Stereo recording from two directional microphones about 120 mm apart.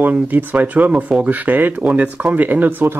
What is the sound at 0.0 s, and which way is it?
Speech, 15° right (ahead or behind).